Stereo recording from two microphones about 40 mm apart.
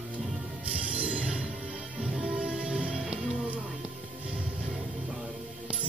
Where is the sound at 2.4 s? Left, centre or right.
Right.